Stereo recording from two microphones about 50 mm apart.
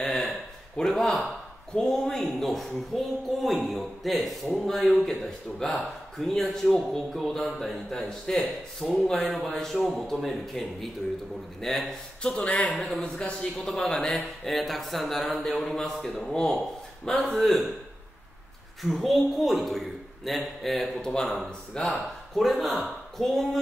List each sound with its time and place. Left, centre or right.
0.8 s speech: centre
12.2 s speech: centre
12.7 s speech: centre
13.0 s speech: centre
13.6 s speech: centre
18.8 s speech: centre